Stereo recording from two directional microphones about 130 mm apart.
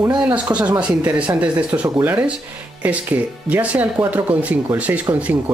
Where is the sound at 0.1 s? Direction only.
10° right (ahead or behind).